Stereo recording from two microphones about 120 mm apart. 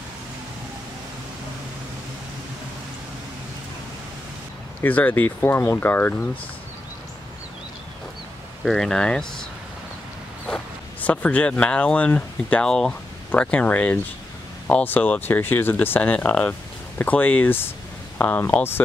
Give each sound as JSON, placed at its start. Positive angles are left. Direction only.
{"t": 4.8, "sound": "speech", "side_deg": 15}
{"t": 8.6, "sound": "speech", "side_deg": 5}
{"t": 10.5, "sound": "speech", "side_deg": 10}